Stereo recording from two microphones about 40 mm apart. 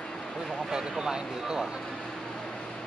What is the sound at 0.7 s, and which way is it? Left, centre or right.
Speech, centre.